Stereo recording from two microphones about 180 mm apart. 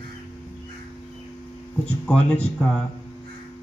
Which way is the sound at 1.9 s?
5° left (ahead or behind).